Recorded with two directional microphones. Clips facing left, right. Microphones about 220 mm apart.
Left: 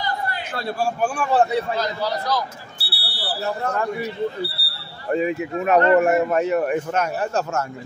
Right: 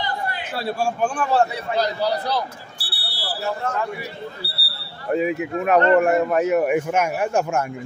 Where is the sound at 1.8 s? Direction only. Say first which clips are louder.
Right 3 dB; 35° right (ahead or behind).